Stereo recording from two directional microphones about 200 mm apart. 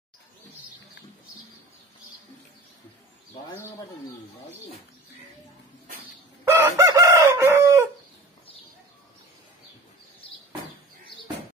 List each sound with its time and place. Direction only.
6.4 s chicken: 15° right (ahead or behind)